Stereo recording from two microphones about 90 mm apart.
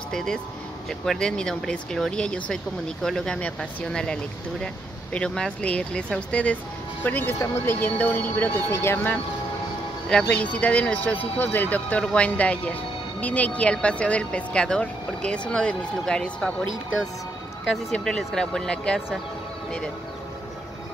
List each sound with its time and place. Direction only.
0.1 s speech: 5° left (ahead or behind)
17.9 s speech: 5° left (ahead or behind)